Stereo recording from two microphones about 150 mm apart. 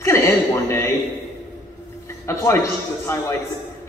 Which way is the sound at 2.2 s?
20° left (ahead or behind).